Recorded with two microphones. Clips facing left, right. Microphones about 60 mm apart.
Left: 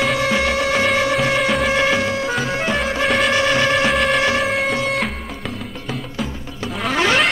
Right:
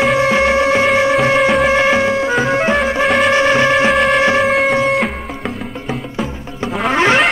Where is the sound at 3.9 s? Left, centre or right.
Centre.